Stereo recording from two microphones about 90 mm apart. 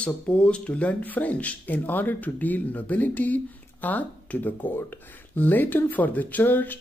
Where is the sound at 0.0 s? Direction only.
15° left (ahead or behind).